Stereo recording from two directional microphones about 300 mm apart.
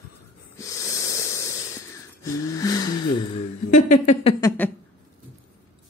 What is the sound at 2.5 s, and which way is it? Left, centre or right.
A woman's voice, centre.